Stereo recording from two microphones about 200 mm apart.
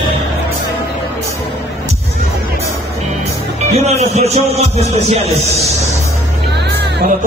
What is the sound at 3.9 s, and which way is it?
A man's voice, 35° right (ahead or behind).